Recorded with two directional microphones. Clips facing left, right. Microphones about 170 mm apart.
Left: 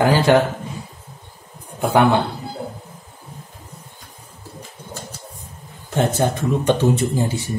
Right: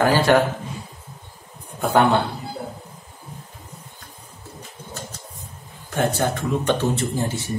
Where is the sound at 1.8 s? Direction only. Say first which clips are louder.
Left 2 dB; 10° left (ahead or behind).